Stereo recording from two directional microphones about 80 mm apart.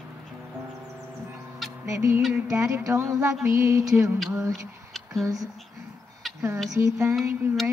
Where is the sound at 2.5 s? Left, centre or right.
Right.